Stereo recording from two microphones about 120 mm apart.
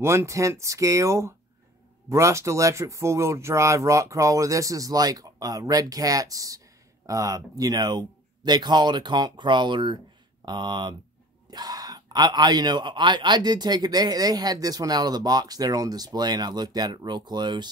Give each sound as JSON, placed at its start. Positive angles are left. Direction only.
{"t": 0.0, "sound": "a man's voice", "side_deg": -25}